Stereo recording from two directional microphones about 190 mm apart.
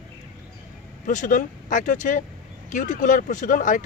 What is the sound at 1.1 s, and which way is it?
Speech, 40° left (ahead or behind).